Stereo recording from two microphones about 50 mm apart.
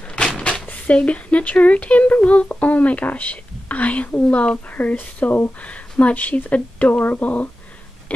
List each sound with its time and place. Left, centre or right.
0.1 s a sound: centre
0.7 s a woman's voice: left
5.6 s a woman's voice: left